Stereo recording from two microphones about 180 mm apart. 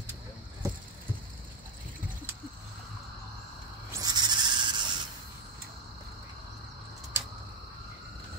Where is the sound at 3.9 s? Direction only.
20° right (ahead or behind).